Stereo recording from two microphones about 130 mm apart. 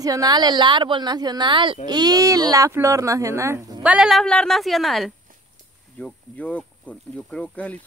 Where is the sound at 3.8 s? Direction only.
5° right (ahead or behind).